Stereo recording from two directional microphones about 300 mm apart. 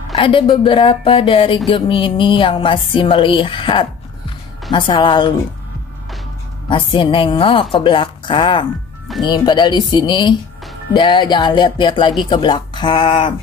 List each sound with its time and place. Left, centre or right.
0.1 s speech: centre
6.7 s speech: centre